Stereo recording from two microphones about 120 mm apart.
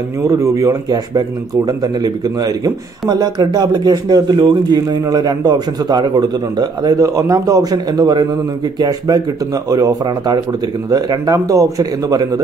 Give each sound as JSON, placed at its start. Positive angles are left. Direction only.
{"t": 0.2, "sound": "speech", "side_deg": -25}